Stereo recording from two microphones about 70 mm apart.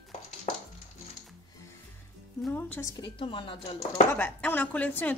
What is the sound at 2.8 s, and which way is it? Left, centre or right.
Speech, left.